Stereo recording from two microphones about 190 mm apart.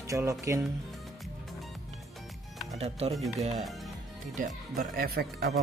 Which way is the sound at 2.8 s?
30° right (ahead or behind).